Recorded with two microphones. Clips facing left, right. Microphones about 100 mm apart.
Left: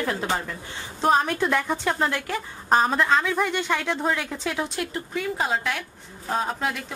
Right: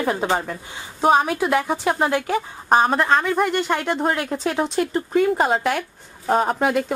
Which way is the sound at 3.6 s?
15° right (ahead or behind).